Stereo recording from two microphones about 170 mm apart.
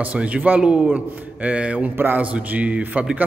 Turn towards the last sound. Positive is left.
turn(degrees=-5)  # may be behind; listen again after turning